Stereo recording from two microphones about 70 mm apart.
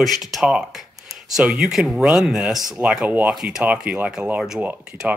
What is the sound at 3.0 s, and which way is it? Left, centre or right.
Speech, right.